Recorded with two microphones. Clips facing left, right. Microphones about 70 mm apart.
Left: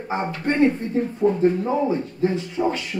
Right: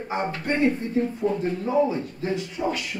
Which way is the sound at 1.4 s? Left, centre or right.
Left.